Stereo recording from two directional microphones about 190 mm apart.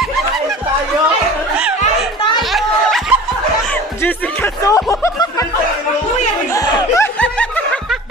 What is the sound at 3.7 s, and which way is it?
Music, 10° left (ahead or behind).